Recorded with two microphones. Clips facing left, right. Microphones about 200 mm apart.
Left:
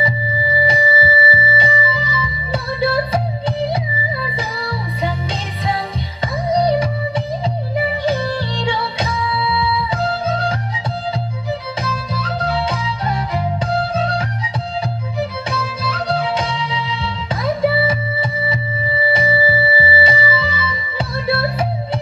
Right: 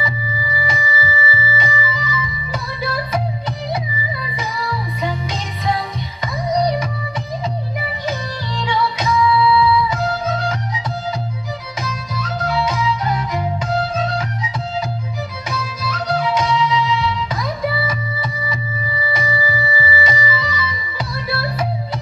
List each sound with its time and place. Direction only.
0.7 s music: 30° left (ahead or behind)
6.2 s music: 30° left (ahead or behind)
8.0 s music: 30° left (ahead or behind)
11.8 s music: 30° left (ahead or behind)
15.5 s music: 30° left (ahead or behind)